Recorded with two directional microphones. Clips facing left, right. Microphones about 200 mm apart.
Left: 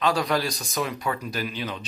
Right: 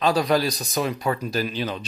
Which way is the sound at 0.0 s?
30° right (ahead or behind).